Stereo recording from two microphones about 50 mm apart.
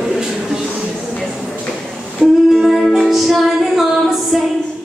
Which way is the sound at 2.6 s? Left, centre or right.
Centre.